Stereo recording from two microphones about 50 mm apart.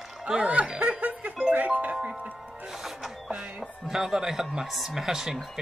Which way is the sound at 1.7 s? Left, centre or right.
Right.